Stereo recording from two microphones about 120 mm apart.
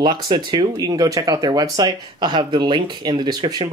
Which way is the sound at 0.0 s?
40° right (ahead or behind).